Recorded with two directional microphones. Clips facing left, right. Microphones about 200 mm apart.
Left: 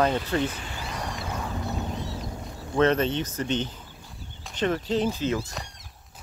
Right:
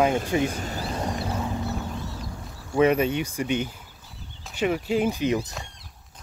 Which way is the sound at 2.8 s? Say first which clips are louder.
Right 2 dB; 10° right (ahead or behind).